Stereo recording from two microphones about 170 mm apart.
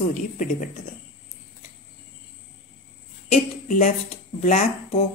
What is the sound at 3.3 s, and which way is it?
Speech, 50° left (ahead or behind).